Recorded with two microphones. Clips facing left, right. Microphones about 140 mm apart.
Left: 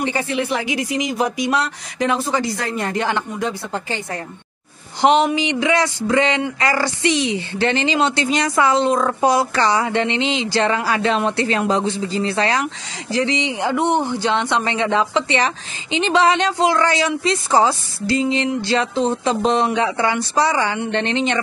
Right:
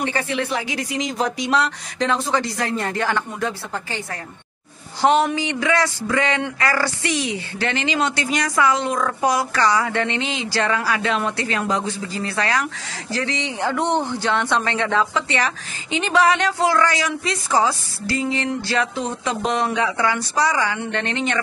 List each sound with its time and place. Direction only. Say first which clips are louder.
0.0 s speech: left 2 dB; 15° left (ahead or behind)